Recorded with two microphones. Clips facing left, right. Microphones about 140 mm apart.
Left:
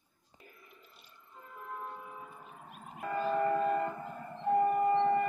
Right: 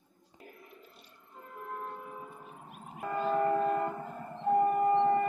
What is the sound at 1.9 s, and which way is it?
Church bell, 45° right (ahead or behind).